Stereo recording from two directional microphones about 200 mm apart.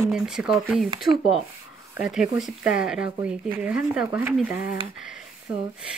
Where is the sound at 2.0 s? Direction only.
5° right (ahead or behind).